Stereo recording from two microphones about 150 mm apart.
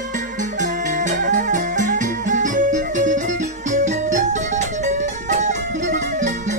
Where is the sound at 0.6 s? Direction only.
55° right (ahead or behind).